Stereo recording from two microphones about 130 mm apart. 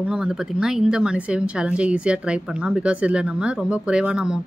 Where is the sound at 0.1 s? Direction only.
5° right (ahead or behind).